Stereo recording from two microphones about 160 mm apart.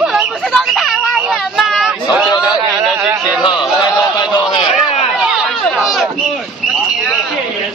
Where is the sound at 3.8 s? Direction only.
30° left (ahead or behind).